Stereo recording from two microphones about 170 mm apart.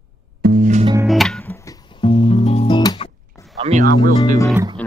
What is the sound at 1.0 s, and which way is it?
Music, centre (ahead or behind).